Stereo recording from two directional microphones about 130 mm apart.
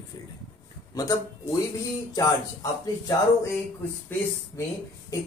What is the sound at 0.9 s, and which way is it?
Speech, 30° left (ahead or behind).